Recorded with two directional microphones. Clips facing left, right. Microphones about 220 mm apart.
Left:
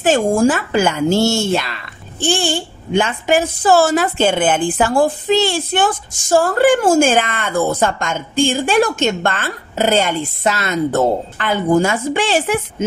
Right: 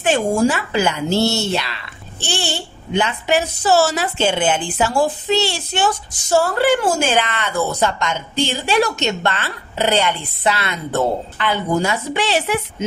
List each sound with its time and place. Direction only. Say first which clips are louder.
0.0 s speech: left 3 dB; 45° left (ahead or behind)